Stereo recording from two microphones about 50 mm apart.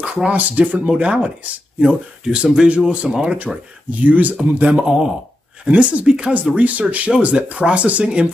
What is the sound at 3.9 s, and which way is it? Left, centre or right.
Speech, right.